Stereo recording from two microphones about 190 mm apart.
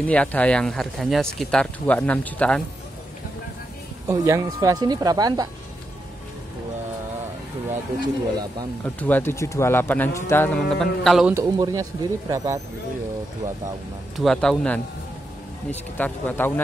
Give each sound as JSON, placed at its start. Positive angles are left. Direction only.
{"t": 0.0, "sound": "speech", "side_deg": 5}
{"t": 4.1, "sound": "speech", "side_deg": -15}
{"t": 8.8, "sound": "speech", "side_deg": 10}
{"t": 11.3, "sound": "speech", "side_deg": -20}
{"t": 14.1, "sound": "speech", "side_deg": 0}
{"t": 16.0, "sound": "speech", "side_deg": 10}